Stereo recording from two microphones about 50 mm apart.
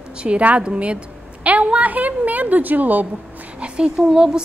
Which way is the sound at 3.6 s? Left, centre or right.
Centre.